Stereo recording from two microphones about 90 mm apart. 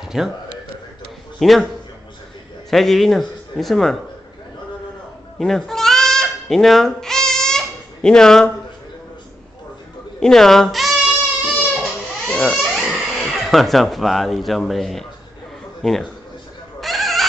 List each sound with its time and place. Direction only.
0.0 s a sound: 5° right (ahead or behind)
1.4 s a man's voice: centre (ahead or behind)
2.7 s a man's voice: 5° left (ahead or behind)
5.4 s bleat: 5° left (ahead or behind)
10.2 s speech: 5° left (ahead or behind)
11.4 s music: 10° right (ahead or behind)
12.3 s speech: 5° left (ahead or behind)
16.8 s a sound: centre (ahead or behind)